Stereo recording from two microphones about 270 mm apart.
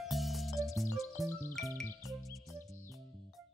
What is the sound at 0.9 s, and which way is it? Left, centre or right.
Music, centre.